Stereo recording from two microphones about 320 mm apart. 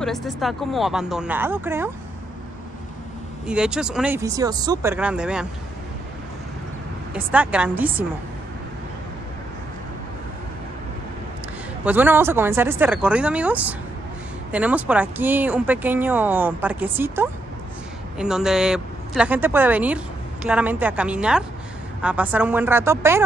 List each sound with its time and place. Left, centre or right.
0.0 s speech: centre
3.4 s speech: centre
7.2 s speech: centre
11.8 s speech: centre